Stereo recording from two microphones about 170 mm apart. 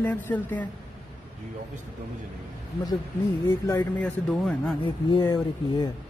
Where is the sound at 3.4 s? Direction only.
15° left (ahead or behind).